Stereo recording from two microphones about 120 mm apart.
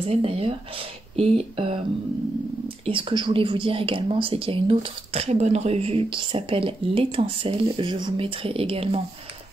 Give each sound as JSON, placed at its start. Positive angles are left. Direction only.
{"t": 0.0, "sound": "speech", "side_deg": -55}
{"t": 1.1, "sound": "a sound", "side_deg": -60}
{"t": 2.8, "sound": "speech", "side_deg": -45}